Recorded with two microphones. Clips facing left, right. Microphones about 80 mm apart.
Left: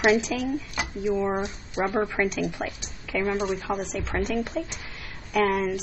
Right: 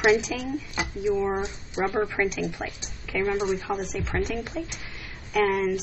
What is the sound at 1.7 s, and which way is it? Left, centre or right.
Speech, centre.